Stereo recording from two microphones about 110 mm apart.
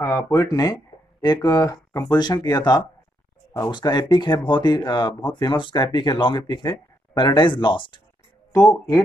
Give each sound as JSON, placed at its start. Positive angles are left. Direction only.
{"t": 0.0, "sound": "speech", "side_deg": 25}
{"t": 8.5, "sound": "speech", "side_deg": 30}